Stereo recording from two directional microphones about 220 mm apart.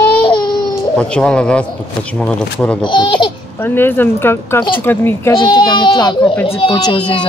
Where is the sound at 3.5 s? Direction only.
10° left (ahead or behind).